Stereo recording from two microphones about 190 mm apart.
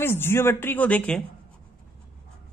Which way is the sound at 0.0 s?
10° left (ahead or behind).